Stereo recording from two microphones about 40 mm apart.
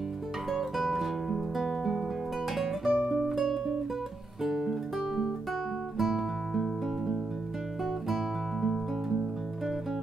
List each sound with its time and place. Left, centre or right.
0.5 s music: centre
2.9 s music: right
3.3 s music: centre
4.4 s guitar: centre
5.9 s music: centre